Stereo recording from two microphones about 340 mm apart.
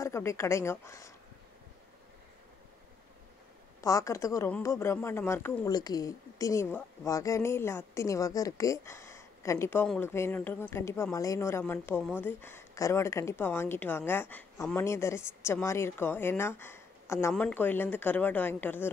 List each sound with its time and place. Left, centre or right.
0.0 s speech: centre
3.8 s speech: centre